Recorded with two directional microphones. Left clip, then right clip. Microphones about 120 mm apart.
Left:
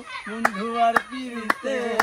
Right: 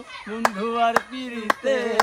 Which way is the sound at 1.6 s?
20° right (ahead or behind).